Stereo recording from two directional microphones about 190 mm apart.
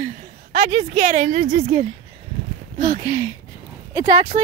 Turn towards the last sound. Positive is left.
turn(degrees=-25)  # may be behind; listen again after turning